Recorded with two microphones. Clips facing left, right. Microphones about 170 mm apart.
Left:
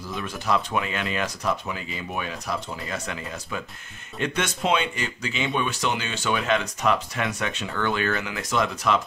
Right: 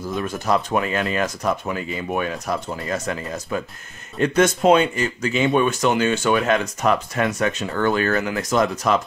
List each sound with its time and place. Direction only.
0.1 s speech: 45° right (ahead or behind)